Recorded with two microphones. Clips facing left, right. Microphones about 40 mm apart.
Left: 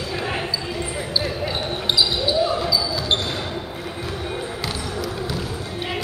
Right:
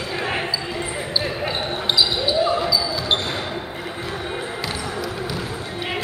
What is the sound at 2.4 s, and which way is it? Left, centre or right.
Basketball bounce, centre.